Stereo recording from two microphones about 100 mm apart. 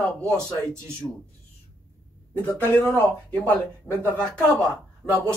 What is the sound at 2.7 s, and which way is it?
Speech, 20° left (ahead or behind).